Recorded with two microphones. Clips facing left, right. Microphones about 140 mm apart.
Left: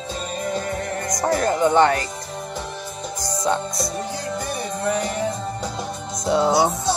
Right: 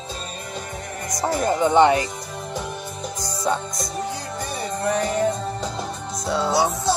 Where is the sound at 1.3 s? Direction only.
15° right (ahead or behind).